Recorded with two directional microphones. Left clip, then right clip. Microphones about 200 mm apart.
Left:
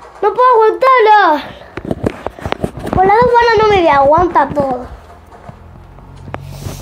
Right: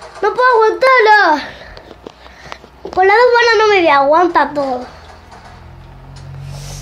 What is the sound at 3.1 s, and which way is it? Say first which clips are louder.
A woman's voice: even; 5° right (ahead or behind).